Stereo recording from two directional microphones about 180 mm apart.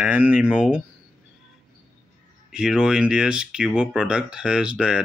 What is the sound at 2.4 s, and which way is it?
A man's voice, 5° right (ahead or behind).